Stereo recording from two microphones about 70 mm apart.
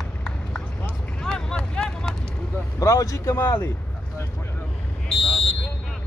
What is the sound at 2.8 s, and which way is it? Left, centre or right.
Speech, left.